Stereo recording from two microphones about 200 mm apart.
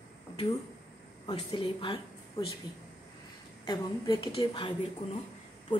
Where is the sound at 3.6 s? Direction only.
20° left (ahead or behind).